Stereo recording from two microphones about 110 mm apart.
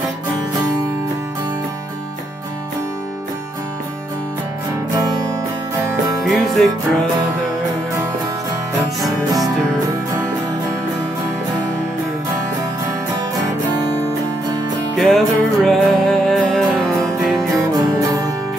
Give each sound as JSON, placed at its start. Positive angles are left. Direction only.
{"t": 4.9, "sound": "music", "side_deg": -35}
{"t": 6.2, "sound": "music", "side_deg": 0}
{"t": 15.0, "sound": "music", "side_deg": 0}
{"t": 17.7, "sound": "music", "side_deg": -35}